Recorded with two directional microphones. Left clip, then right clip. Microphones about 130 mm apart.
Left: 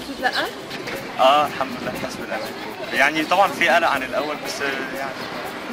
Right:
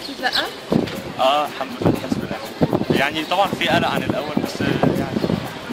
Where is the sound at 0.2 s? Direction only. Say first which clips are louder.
Right 1 dB; 5° left (ahead or behind).